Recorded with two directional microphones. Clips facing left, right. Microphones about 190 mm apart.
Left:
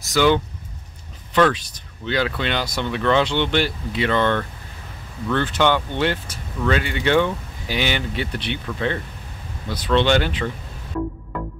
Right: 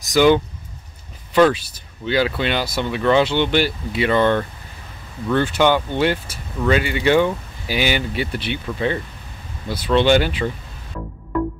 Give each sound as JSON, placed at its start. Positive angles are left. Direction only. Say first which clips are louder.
{"t": 0.0, "sound": "speech", "louder": "right 3 dB", "side_deg": -15}